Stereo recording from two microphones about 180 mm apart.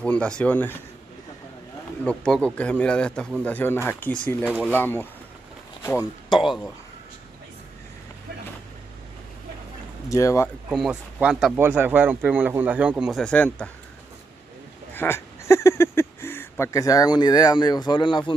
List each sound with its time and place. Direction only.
0.0 s speech: 5° left (ahead or behind)
2.0 s speech: 5° left (ahead or behind); by 6.4 s 20° left (ahead or behind)
6.4 s speech: centre (ahead or behind)
10.0 s speech: 15° left (ahead or behind)
10.7 s speech: 5° right (ahead or behind)
15.0 s speech: 15° left (ahead or behind)